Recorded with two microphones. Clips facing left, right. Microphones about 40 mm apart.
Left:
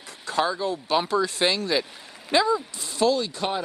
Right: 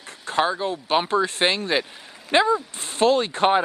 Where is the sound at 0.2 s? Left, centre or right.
Right.